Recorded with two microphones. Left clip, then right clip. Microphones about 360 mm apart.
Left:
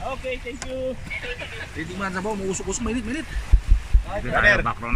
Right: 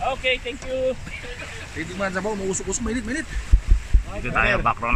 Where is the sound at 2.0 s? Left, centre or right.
Centre.